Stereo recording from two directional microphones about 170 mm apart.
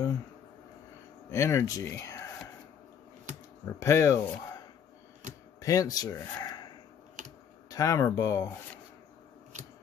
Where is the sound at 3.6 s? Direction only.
15° left (ahead or behind).